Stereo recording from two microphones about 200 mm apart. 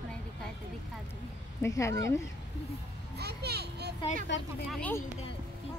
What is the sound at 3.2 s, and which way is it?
Speech, 55° right (ahead or behind).